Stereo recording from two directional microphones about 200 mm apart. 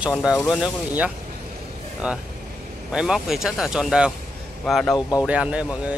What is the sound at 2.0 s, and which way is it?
Speech, 5° right (ahead or behind).